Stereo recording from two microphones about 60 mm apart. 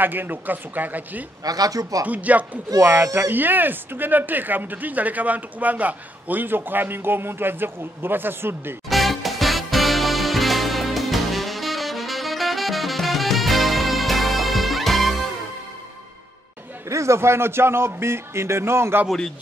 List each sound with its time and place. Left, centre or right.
0.0 s speech: right
1.4 s speech: right
2.0 s speech: right
3.0 s a man's voice: right
3.3 s speech: right
8.8 s music: centre
16.9 s a man's voice: right